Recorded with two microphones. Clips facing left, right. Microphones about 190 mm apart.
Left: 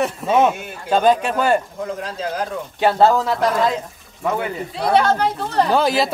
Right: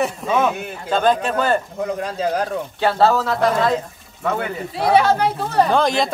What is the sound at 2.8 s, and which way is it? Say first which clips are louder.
Speech: left 2 dB; 15° left (ahead or behind).